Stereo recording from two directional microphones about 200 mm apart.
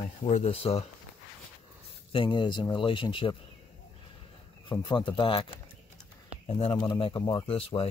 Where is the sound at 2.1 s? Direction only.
25° left (ahead or behind).